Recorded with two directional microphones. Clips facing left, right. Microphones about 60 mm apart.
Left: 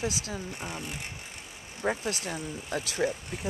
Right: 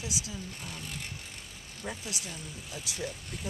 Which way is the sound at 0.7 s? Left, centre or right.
Left.